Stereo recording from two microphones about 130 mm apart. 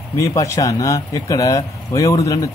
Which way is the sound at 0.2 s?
25° left (ahead or behind).